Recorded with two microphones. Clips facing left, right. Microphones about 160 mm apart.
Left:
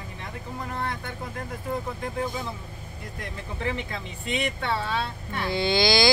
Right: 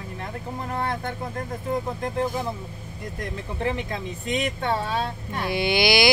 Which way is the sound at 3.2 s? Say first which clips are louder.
Right 4 dB; 45° right (ahead or behind).